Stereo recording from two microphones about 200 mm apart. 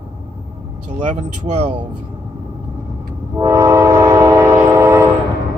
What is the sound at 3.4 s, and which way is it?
Train, 15° right (ahead or behind).